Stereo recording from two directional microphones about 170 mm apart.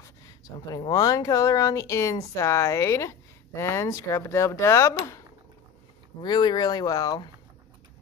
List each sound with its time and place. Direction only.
0.7 s speech: 20° left (ahead or behind)
6.2 s speech: 25° left (ahead or behind)